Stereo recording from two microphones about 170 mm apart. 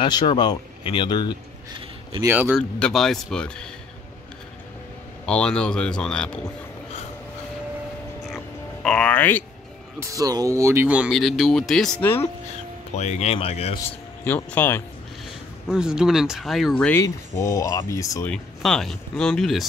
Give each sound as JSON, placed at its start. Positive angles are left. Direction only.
{"t": 0.0, "sound": "speech", "side_deg": 25}
{"t": 2.2, "sound": "a man's voice", "side_deg": -10}
{"t": 2.8, "sound": "speech", "side_deg": 0}
{"t": 5.2, "sound": "speech", "side_deg": 5}
{"t": 8.8, "sound": "speech", "side_deg": 5}
{"t": 10.0, "sound": "speech", "side_deg": -20}
{"t": 12.9, "sound": "speech", "side_deg": 40}
{"t": 14.2, "sound": "speech", "side_deg": 10}
{"t": 15.7, "sound": "speech", "side_deg": -5}
{"t": 18.3, "sound": "speech", "side_deg": 0}